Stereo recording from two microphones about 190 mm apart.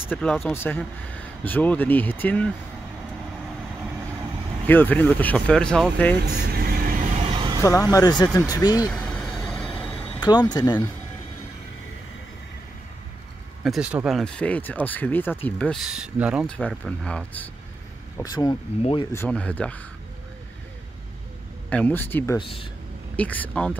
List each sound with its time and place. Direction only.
0.0 s speech: 10° left (ahead or behind)
4.6 s speech: 10° left (ahead or behind)
6.5 s vehicle: 50° right (ahead or behind)
7.2 s a sound: 25° right (ahead or behind)
7.6 s speech: 15° left (ahead or behind)
8.9 s vehicle: 5° left (ahead or behind)
10.4 s speech: 20° left (ahead or behind)
13.7 s speech: 5° right (ahead or behind)
16.4 s speech: 5° left (ahead or behind)
18.2 s speech: 20° left (ahead or behind)
19.1 s speech: 5° left (ahead or behind)
21.6 s speech: 10° left (ahead or behind)
22.4 s speech: 25° left (ahead or behind)
23.1 s speech: 10° left (ahead or behind)